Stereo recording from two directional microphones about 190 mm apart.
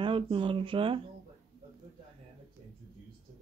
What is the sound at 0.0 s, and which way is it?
Speech, 25° right (ahead or behind).